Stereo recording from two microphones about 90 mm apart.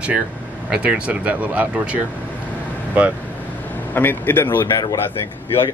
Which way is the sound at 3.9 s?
20° left (ahead or behind).